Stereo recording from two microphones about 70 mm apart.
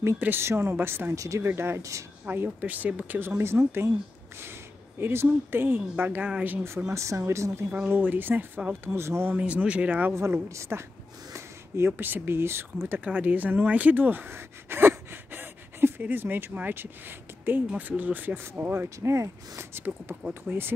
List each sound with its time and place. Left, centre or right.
0.2 s speech: right
1.1 s speech: right
1.4 s speech: right
1.8 s speech: right
2.2 s speech: right
3.2 s speech: right
5.0 s speech: right
6.9 s speech: right
7.8 s speech: right
9.4 s speech: centre
10.5 s speech: right
13.0 s speech: right